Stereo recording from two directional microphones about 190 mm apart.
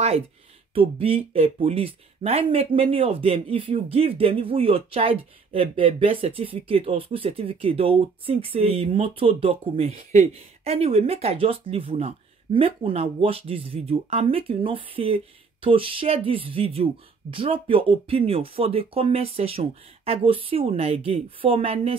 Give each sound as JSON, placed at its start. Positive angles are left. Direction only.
{"t": 0.7, "sound": "speech", "side_deg": -30}